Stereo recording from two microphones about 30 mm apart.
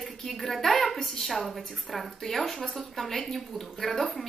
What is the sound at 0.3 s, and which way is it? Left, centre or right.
A woman's voice, centre.